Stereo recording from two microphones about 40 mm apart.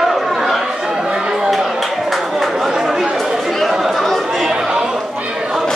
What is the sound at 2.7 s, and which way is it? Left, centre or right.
Chatter, centre.